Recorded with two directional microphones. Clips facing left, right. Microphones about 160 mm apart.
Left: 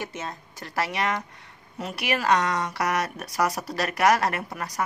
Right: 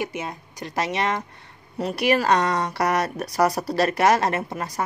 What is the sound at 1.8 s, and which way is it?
Speech, 35° right (ahead or behind).